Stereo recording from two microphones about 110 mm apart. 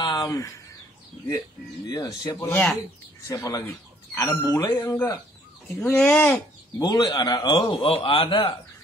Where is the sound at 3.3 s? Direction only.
35° left (ahead or behind).